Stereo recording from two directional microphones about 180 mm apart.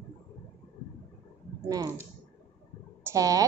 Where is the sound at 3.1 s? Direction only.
20° right (ahead or behind).